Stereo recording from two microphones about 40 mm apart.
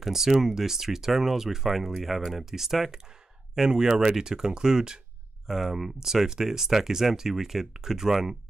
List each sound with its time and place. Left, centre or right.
0.0 s speech: centre
5.5 s speech: centre